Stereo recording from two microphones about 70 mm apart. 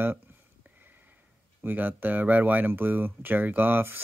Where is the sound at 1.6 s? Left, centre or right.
Right.